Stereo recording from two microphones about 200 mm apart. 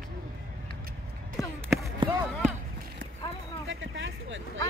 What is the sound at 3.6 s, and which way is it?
Vehicle, 70° right (ahead or behind).